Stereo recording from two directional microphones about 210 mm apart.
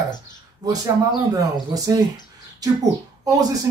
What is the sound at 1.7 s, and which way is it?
A man's voice, 15° right (ahead or behind).